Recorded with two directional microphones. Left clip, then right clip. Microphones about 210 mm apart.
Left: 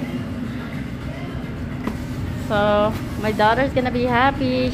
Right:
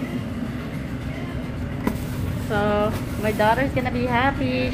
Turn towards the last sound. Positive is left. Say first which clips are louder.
# left 4 dB
turn(degrees=20)  # may be behind; listen again after turning